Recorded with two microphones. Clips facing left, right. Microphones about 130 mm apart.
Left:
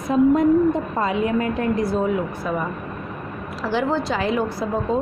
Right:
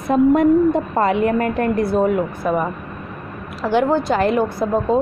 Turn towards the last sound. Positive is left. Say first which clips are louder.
# right 5 dB
turn(degrees=-55)  # may be behind; listen again after turning